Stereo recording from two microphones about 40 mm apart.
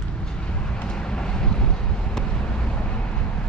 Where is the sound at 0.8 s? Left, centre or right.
Left.